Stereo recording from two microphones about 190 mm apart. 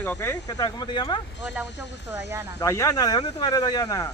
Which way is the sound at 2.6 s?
15° left (ahead or behind).